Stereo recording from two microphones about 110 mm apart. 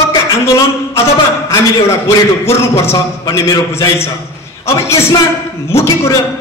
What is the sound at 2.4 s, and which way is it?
A man's voice, 25° left (ahead or behind).